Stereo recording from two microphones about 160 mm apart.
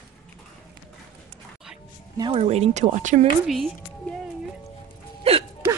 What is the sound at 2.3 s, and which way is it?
Speech, 40° right (ahead or behind).